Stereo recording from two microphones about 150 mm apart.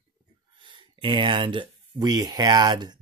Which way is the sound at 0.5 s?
35° right (ahead or behind).